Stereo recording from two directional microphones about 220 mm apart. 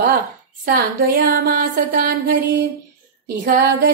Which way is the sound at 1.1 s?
45° right (ahead or behind).